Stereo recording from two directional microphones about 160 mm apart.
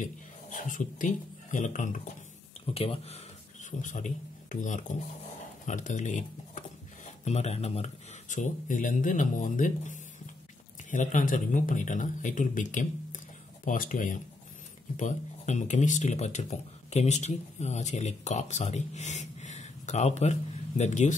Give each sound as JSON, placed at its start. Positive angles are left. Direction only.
{"t": 0.0, "sound": "speech", "side_deg": 55}
{"t": 2.6, "sound": "speech", "side_deg": 35}
{"t": 3.8, "sound": "speech", "side_deg": 55}